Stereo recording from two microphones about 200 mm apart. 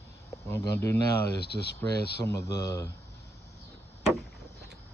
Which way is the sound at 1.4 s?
55° left (ahead or behind).